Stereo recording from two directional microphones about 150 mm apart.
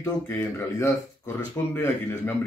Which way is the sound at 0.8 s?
20° left (ahead or behind).